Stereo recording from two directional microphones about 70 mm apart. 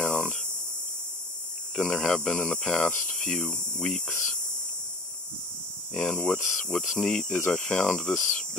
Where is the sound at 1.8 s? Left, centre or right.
Centre.